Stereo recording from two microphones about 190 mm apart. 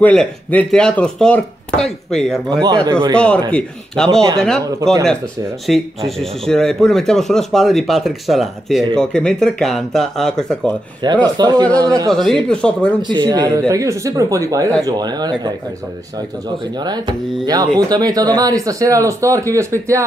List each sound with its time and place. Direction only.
0.0 s speech: 5° left (ahead or behind)
2.6 s speech: 20° right (ahead or behind)
3.2 s speech: 5° left (ahead or behind)
5.7 s speech: centre (ahead or behind)
11.0 s speech: 25° right (ahead or behind)
12.1 s speech: centre (ahead or behind)
13.0 s speech: 25° right (ahead or behind)
16.8 s speech: 20° right (ahead or behind)